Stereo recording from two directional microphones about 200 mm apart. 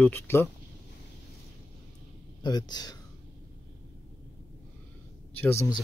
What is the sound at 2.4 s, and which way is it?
Speech, 20° left (ahead or behind).